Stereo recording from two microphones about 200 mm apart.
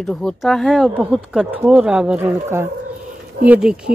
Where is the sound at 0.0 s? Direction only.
5° left (ahead or behind).